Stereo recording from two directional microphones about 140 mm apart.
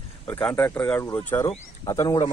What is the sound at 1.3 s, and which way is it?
Speech, 25° left (ahead or behind).